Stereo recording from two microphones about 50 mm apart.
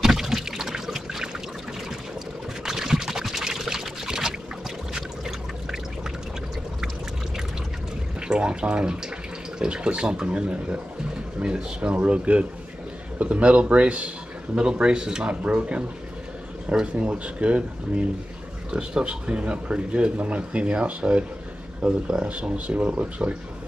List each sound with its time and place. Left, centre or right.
0.0 s liquid: centre
2.6 s pour: centre
8.3 s speech: centre